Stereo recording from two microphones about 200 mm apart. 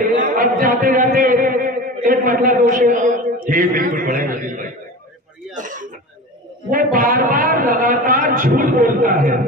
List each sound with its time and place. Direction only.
0.0 s a man's voice: 40° right (ahead or behind)
5.6 s throat clearing: 40° right (ahead or behind)
6.7 s a man's voice: 45° right (ahead or behind)